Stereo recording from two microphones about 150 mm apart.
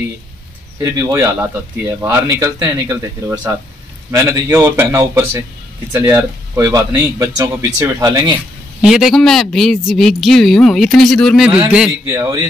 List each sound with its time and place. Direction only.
0.7 s a man's voice: 20° right (ahead or behind)
8.8 s speech: 5° right (ahead or behind)